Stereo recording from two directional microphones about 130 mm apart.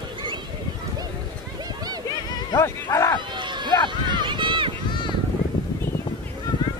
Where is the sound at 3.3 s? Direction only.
35° right (ahead or behind).